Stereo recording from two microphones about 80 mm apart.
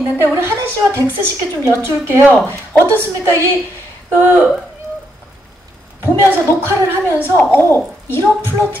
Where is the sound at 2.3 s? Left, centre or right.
Centre.